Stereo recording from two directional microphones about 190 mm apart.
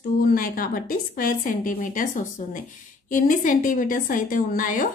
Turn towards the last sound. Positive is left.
turn(degrees=45)  # may be behind; listen again after turning